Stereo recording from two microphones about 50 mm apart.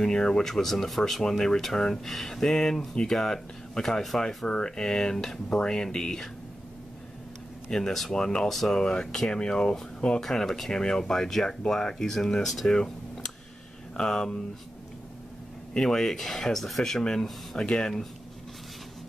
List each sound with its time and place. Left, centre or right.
0.0 s speech: centre
7.7 s speech: centre
12.7 s a sound: centre
14.0 s speech: centre
15.7 s speech: centre